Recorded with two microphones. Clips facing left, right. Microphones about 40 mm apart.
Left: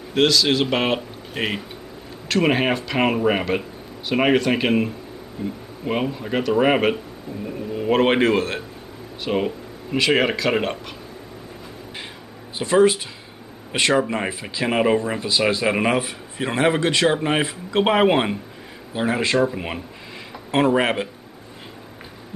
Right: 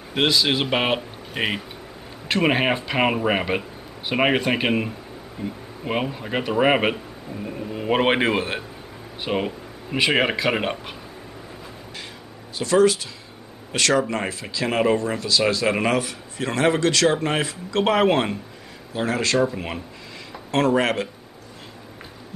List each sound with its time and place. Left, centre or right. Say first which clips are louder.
0.1 s speech: left 2 dB; centre
12.5 s a man's voice: left 1 dB; left